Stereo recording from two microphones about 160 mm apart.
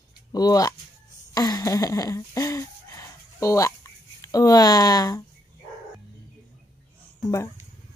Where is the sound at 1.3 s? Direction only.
20° left (ahead or behind).